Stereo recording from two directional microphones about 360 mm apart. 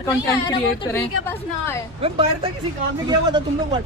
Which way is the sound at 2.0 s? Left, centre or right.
Centre.